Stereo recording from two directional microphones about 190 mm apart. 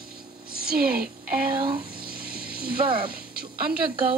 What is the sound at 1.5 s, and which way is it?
Speech, 25° right (ahead or behind).